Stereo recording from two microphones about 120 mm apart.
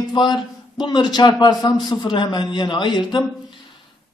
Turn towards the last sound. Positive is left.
turn(degrees=40)  # may be behind; listen again after turning